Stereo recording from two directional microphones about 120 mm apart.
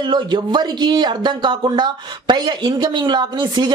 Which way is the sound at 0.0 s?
40° right (ahead or behind).